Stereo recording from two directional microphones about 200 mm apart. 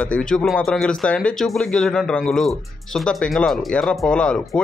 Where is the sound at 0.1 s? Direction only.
5° left (ahead or behind).